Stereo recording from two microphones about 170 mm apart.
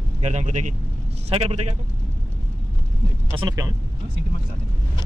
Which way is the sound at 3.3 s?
30° right (ahead or behind).